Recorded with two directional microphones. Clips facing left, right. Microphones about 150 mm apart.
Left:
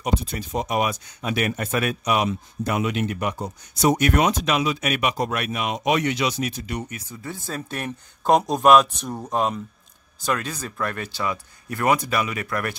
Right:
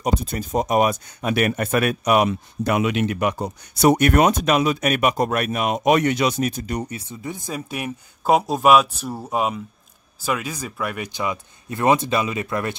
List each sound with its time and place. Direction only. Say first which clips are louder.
0.0 s speech: right 2 dB; 45° right (ahead or behind)
7.2 s speech: right 2 dB; 15° right (ahead or behind)